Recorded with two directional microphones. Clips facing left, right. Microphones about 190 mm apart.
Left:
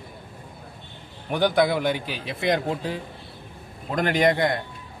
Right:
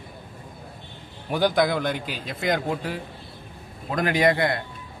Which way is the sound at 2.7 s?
20° left (ahead or behind).